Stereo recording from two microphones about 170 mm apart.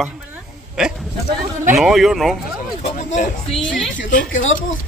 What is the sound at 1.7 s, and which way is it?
Speech, centre (ahead or behind).